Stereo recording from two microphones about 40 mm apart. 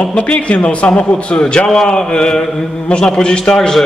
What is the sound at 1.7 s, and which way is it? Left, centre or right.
A man's voice, centre.